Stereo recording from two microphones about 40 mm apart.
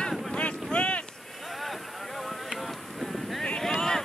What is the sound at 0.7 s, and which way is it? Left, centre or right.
Boat, left.